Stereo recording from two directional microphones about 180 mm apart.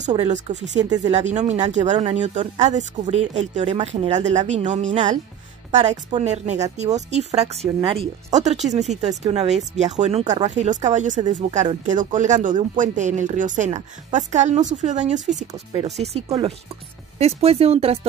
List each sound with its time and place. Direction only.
0.3 s a woman's voice: 40° right (ahead or behind)
15.7 s speech: 30° right (ahead or behind)